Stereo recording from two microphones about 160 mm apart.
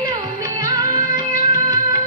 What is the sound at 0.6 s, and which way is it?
Music, 20° right (ahead or behind).